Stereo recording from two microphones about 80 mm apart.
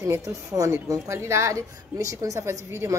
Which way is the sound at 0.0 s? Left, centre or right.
Right.